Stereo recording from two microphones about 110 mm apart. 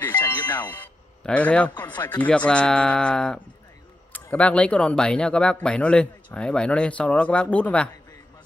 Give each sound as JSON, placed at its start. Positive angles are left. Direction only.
{"t": 0.0, "sound": "music", "side_deg": 20}
{"t": 1.2, "sound": "speech", "side_deg": 10}